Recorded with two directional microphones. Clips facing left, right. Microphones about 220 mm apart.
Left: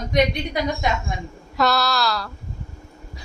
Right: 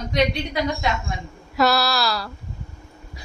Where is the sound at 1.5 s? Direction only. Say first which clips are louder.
Right 1 dB; 5° right (ahead or behind).